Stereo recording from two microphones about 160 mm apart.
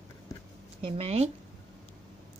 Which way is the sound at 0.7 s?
35° right (ahead or behind).